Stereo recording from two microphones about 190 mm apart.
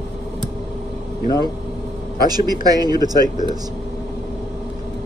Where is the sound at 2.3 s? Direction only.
20° right (ahead or behind).